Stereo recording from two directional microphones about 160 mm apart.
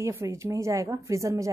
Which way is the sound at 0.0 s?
20° right (ahead or behind).